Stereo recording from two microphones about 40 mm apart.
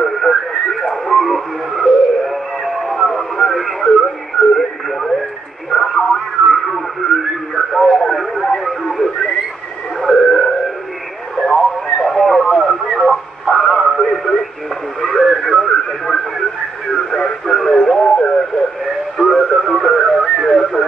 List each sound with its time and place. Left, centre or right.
0.0 s radio: centre
4.4 s music: centre
5.7 s radio: centre
9.9 s a sound: centre
11.5 s radio: centre
17.9 s radio: centre
19.1 s radio: centre